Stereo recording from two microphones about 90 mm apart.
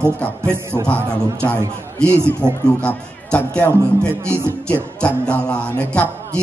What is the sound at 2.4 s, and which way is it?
Speech, 25° right (ahead or behind).